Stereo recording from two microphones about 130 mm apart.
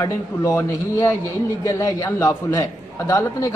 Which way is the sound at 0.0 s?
20° left (ahead or behind).